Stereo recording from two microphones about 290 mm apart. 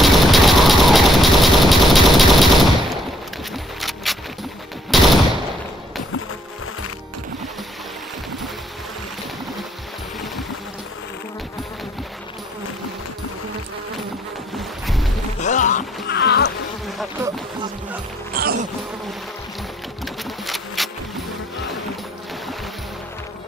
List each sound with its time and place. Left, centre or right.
0.0 s vehicle: centre
3.8 s keys jangling: centre
4.9 s a sound: centre
14.6 s a sound: centre
15.4 s music: left
16.1 s insect: left
16.8 s insect: centre
18.3 s music: right
20.4 s a sound: centre